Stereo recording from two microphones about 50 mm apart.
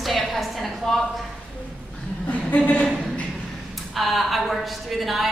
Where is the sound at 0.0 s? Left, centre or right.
Centre.